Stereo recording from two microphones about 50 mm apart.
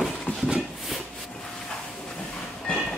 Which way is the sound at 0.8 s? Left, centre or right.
Centre.